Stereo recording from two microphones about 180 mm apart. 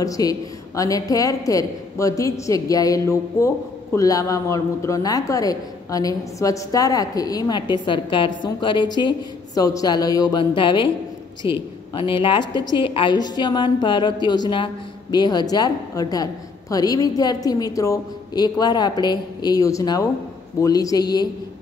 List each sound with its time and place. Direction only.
0.0 s a woman's voice: 20° left (ahead or behind)